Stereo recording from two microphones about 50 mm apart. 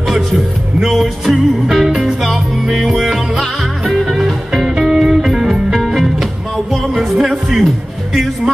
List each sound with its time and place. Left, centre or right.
0.1 s music: centre